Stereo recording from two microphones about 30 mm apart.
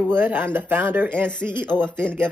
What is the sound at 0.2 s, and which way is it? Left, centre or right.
Speech, right.